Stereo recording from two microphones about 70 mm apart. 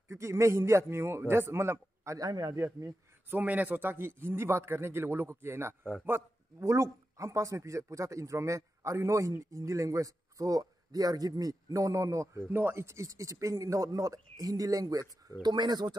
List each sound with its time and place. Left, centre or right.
0.1 s a man's voice: right
2.1 s a man's voice: right
3.3 s a man's voice: right
12.4 s speech: right
15.4 s speech: right